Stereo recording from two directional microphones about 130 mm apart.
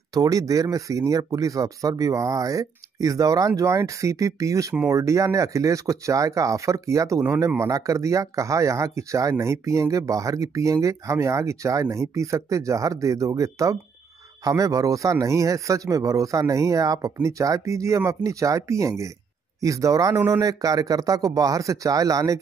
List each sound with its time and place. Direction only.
0.1 s speech: 25° right (ahead or behind)